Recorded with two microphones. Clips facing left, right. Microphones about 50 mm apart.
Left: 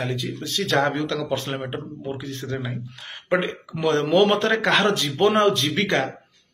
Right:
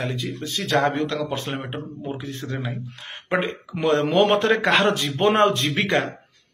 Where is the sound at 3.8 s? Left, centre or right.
Centre.